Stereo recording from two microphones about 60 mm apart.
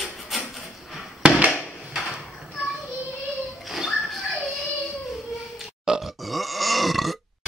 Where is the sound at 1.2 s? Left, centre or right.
Centre.